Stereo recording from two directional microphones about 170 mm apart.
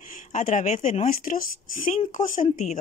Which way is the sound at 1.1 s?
55° left (ahead or behind).